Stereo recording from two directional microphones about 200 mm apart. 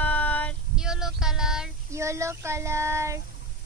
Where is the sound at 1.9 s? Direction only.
15° right (ahead or behind).